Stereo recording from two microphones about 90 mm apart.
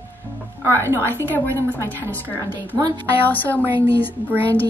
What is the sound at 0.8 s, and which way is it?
Speech, 30° right (ahead or behind).